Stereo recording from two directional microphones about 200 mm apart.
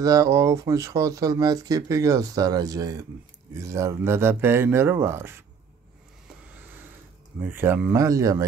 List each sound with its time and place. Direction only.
0.0 s speech: 15° right (ahead or behind)
7.4 s speech: 10° right (ahead or behind)